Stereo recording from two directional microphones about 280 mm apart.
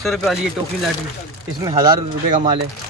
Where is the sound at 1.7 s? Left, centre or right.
Right.